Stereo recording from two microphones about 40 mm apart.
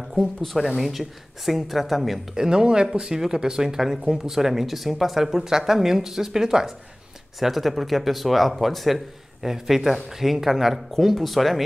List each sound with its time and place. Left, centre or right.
0.1 s speech: centre
2.3 s speech: centre